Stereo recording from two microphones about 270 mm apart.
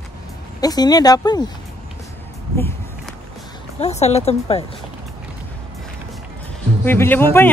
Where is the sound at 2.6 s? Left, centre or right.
Centre.